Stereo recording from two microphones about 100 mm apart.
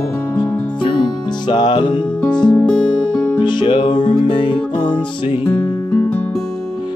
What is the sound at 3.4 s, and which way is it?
Music, 55° left (ahead or behind).